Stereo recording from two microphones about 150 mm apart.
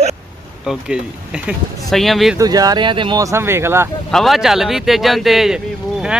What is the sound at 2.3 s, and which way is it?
Speech, 25° right (ahead or behind).